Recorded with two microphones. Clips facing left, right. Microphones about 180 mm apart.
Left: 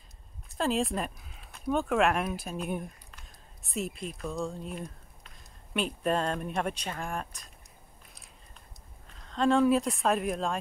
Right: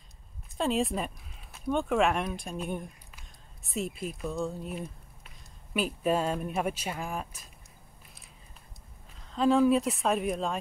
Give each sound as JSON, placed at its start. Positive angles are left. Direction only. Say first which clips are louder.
{"t": 0.6, "sound": "speech", "louder": "even", "side_deg": 0}
{"t": 9.1, "sound": "speech", "louder": "right 1 dB", "side_deg": -5}